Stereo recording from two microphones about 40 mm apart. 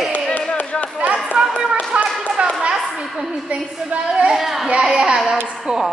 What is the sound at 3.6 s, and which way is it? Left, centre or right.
Speech, centre.